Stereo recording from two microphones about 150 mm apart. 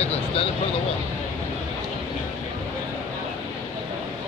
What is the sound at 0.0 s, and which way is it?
Speech, 45° left (ahead or behind).